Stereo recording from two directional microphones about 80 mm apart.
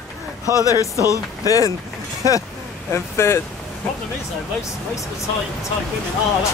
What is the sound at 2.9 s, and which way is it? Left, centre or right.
Speech, left.